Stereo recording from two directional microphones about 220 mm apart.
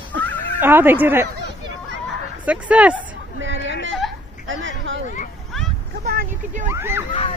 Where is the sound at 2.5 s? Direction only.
5° right (ahead or behind).